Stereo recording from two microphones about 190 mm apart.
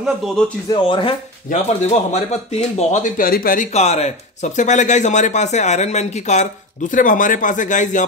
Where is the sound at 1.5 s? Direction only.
40° left (ahead or behind).